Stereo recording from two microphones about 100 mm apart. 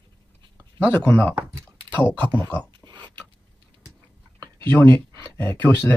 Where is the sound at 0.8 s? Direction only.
15° left (ahead or behind).